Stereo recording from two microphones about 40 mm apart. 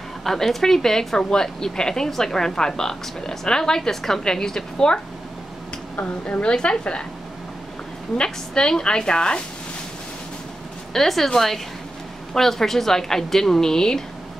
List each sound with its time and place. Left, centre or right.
0.2 s a woman's voice: centre
6.2 s a woman's voice: left
8.2 s a woman's voice: centre
10.9 s a woman's voice: centre